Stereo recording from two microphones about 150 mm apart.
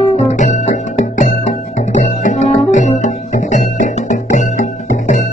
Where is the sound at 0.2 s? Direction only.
50° left (ahead or behind).